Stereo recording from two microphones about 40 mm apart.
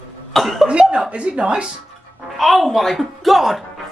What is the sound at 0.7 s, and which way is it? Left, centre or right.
Speech, right.